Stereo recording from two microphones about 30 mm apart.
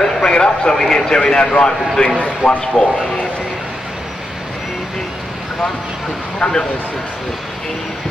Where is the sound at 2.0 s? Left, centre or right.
Left.